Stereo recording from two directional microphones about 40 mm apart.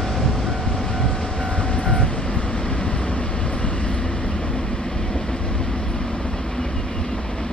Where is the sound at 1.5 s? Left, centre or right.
Left.